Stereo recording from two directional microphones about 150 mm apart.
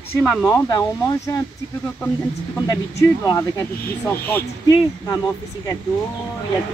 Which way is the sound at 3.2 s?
20° left (ahead or behind).